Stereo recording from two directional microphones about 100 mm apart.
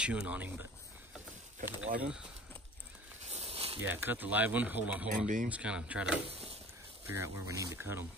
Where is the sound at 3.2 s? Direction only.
90° right.